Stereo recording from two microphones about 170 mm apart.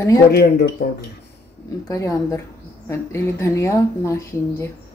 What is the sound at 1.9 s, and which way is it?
Speech, 20° left (ahead or behind).